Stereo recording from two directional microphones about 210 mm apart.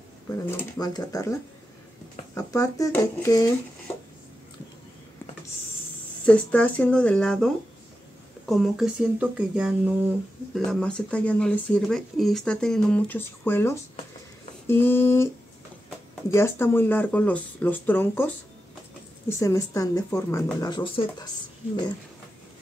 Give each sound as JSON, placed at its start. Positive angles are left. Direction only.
{"t": 0.5, "sound": "speech", "side_deg": 20}
{"t": 2.3, "sound": "speech", "side_deg": 15}
{"t": 6.2, "sound": "speech", "side_deg": 5}
{"t": 16.3, "sound": "speech", "side_deg": 15}